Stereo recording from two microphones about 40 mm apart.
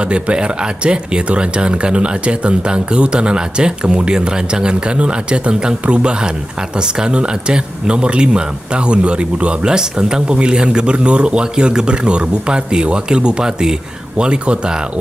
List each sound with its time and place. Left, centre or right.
0.0 s speech: right